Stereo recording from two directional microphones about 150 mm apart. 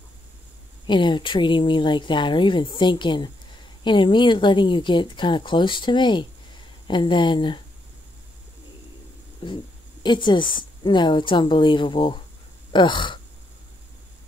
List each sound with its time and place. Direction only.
0.8 s speech: 30° left (ahead or behind)
10.0 s speech: 30° left (ahead or behind)